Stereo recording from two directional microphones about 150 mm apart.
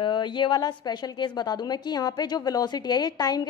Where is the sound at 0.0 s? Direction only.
30° left (ahead or behind).